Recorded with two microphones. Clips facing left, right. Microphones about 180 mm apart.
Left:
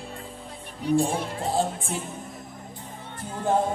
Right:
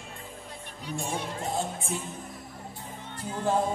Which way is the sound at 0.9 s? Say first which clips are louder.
Left 8 dB; 35° left (ahead or behind).